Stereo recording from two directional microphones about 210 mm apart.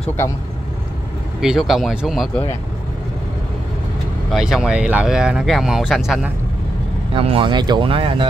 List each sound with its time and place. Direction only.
1.4 s speech: centre (ahead or behind)
4.3 s speech: centre (ahead or behind)
7.2 s speech: 25° right (ahead or behind)